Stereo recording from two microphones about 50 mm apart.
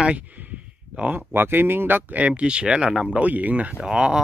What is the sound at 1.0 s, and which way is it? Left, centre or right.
Speech, right.